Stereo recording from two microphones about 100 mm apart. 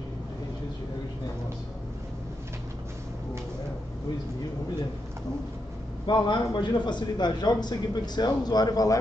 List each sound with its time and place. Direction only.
6.0 s a man's voice: 50° left (ahead or behind)